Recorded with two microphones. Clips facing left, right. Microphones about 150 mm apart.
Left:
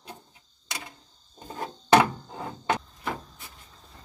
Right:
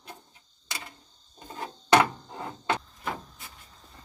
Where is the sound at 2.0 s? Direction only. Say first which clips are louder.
Left 2 dB; 5° left (ahead or behind).